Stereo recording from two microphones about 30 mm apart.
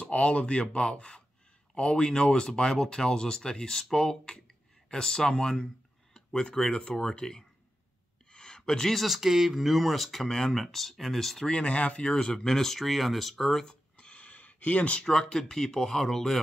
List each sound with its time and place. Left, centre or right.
0.1 s speech: left
6.1 s a sound: left
6.7 s speech: left
8.3 s a sound: left
8.9 s speech: centre
10.2 s speech: centre
10.5 s speech: centre
11.6 s speech: left
12.1 s speech: left
12.8 s speech: centre
13.9 s a sound: left
14.2 s a sound: left
15.0 s speech: left